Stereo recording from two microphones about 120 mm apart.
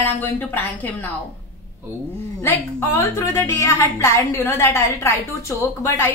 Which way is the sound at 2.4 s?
20° left (ahead or behind).